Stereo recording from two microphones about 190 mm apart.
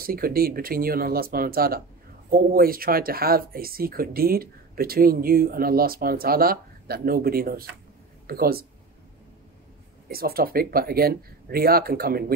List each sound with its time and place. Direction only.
0.0 s speech: 50° right (ahead or behind)
10.0 s speech: 50° right (ahead or behind)